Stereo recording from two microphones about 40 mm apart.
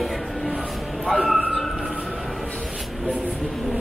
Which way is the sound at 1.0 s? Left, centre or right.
Centre.